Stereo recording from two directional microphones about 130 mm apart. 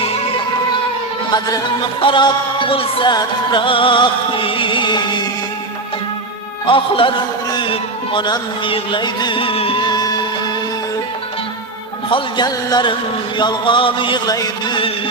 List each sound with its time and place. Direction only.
2.0 s music: 40° left (ahead or behind)
6.6 s a man's voice: 40° left (ahead or behind)
12.1 s music: 35° left (ahead or behind)